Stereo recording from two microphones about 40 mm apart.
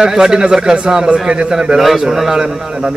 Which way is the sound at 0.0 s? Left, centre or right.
Centre.